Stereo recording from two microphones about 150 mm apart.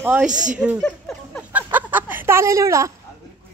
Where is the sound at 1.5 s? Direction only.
10° right (ahead or behind).